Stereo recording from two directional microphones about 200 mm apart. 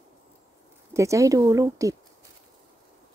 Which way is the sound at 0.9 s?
15° right (ahead or behind).